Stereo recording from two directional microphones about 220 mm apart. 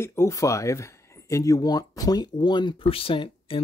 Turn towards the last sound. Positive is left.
turn(degrees=25)  # may be behind; listen again after turning